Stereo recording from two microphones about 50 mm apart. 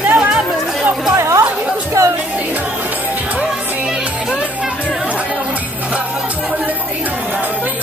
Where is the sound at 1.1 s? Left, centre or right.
Right.